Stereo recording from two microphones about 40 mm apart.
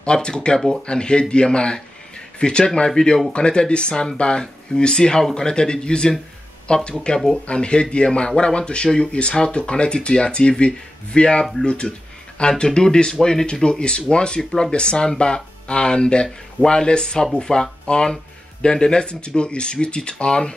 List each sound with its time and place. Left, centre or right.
0.0 s speech: left
14.4 s speech: centre
14.7 s speech: left